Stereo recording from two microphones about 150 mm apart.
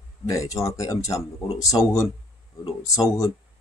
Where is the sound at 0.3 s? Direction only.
20° left (ahead or behind).